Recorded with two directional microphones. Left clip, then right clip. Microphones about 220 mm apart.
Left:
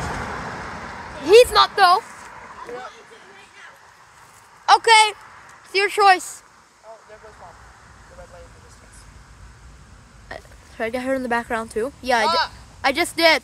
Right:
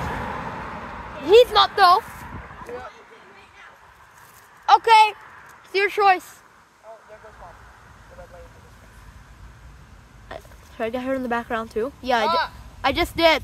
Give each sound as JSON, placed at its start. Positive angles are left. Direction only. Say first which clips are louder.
{"t": 0.1, "sound": "vehicle", "louder": "left 1 dB", "side_deg": 20}
{"t": 1.2, "sound": "speech", "louder": "left 2 dB", "side_deg": 5}
{"t": 2.4, "sound": "bow-wow", "louder": "left 3 dB", "side_deg": 30}
{"t": 4.6, "sound": "a man's voice", "louder": "even", "side_deg": 10}
{"t": 5.1, "sound": "a sound", "louder": "left 1 dB", "side_deg": 45}
{"t": 5.7, "sound": "speech", "louder": "left 1 dB", "side_deg": -10}
{"t": 5.9, "sound": "a man's voice", "louder": "left 4 dB", "side_deg": 10}
{"t": 10.2, "sound": "speech", "louder": "left 1 dB", "side_deg": -5}
{"t": 12.3, "sound": "speech", "louder": "left 2 dB", "side_deg": 40}
{"t": 12.8, "sound": "speech", "louder": "left 1 dB", "side_deg": 0}